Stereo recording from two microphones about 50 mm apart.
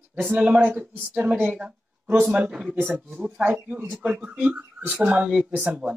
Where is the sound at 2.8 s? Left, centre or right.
Right.